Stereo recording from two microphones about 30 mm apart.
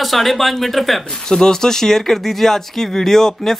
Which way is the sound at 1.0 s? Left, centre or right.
Centre.